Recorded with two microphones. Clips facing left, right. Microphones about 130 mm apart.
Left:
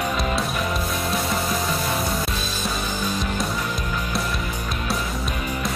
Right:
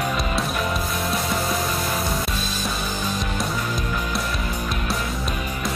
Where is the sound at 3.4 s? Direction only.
Centre (ahead or behind).